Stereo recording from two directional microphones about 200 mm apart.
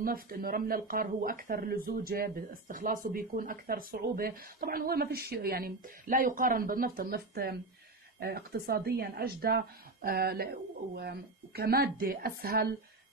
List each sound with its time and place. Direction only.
0.0 s speech: 45° right (ahead or behind)